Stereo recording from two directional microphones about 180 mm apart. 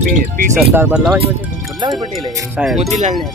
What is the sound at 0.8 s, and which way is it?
Speech, 10° right (ahead or behind).